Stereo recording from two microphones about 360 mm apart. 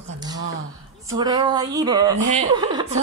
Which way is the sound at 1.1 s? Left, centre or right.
Centre.